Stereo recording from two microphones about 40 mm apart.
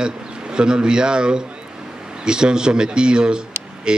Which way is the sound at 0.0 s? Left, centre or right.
Right.